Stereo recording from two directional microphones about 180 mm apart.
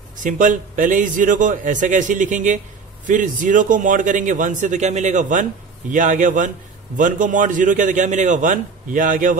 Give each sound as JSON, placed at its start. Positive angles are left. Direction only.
{"t": 0.2, "sound": "a man's voice", "side_deg": -45}